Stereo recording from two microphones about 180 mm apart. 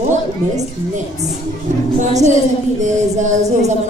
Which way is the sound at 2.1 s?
40° right (ahead or behind).